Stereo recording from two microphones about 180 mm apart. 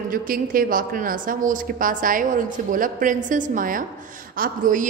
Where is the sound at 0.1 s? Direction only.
50° right (ahead or behind).